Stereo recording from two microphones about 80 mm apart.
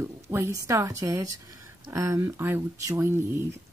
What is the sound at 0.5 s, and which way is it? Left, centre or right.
A woman's voice, right.